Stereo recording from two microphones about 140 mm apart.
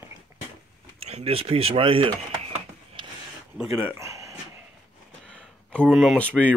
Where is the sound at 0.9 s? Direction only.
45° right (ahead or behind).